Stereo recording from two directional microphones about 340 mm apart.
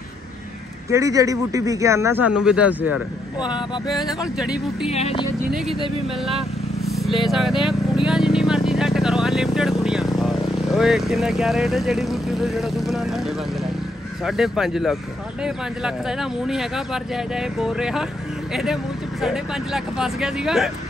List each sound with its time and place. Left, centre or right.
0.8 s speech: centre
3.3 s speech: centre
3.8 s speech: centre
4.9 s speech: centre
6.9 s vehicle: centre
14.2 s speech: centre